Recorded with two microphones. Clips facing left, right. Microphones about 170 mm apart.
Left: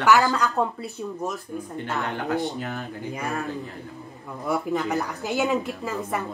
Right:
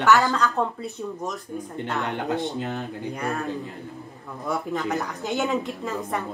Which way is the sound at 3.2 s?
Centre (ahead or behind).